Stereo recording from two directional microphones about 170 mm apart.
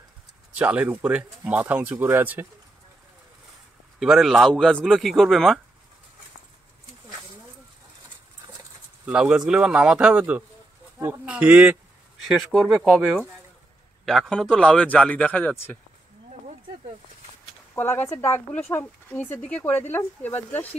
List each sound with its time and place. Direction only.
0.6 s speech: 10° right (ahead or behind)
4.0 s speech: centre (ahead or behind)
9.0 s speech: 5° right (ahead or behind); by 15.8 s 15° left (ahead or behind)
17.7 s speech: 15° left (ahead or behind)